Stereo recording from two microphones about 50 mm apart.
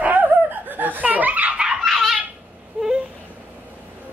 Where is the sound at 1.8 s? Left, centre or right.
Centre.